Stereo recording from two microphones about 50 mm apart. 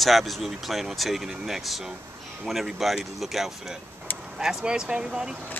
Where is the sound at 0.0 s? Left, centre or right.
Centre.